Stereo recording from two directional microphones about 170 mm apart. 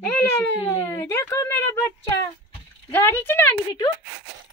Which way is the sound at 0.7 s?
15° left (ahead or behind).